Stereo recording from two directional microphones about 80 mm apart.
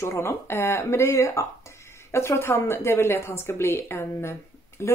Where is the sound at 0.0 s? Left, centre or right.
Left.